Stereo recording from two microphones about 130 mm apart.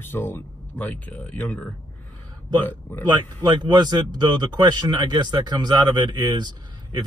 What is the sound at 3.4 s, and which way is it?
Speech, 35° right (ahead or behind).